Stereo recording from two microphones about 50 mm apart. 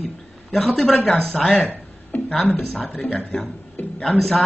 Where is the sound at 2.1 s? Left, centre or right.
Left.